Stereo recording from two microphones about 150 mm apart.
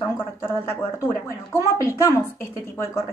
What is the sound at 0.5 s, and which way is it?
A woman's voice, 15° left (ahead or behind).